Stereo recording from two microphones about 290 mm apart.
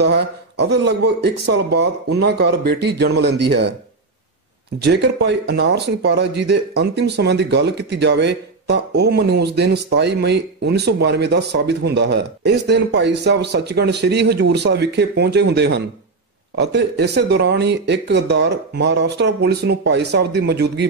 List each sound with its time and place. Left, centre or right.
0.0 s speech: right
4.8 s speech: right